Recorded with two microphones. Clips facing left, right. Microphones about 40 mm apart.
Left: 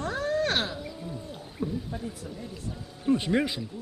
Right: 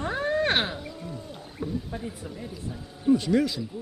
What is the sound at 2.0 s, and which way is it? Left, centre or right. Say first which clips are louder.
Speech: right 1 dB; right.